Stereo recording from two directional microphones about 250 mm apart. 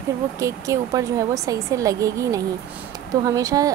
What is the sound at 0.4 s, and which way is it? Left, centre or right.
Speech, centre.